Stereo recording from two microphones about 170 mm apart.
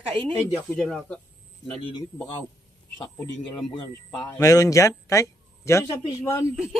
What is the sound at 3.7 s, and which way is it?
A man's voice, 30° left (ahead or behind).